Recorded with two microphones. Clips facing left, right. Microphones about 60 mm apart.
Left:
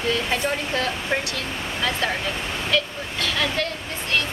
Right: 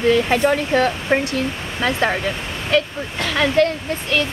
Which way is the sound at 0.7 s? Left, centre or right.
Right.